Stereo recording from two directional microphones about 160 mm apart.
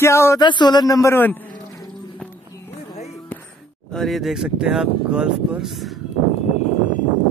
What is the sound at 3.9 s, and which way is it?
Speech, centre (ahead or behind).